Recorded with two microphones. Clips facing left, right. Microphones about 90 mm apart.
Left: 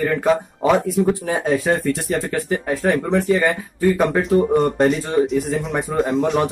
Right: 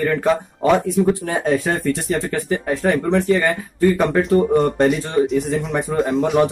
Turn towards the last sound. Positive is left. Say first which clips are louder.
# right 2 dB
turn(degrees=0)  # may be behind; listen again after turning